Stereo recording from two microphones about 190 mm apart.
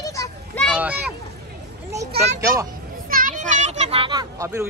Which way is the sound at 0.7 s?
5° right (ahead or behind).